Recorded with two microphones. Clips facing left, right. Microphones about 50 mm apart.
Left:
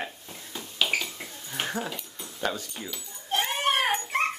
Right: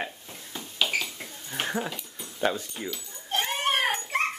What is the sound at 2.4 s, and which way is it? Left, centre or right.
Speech, centre.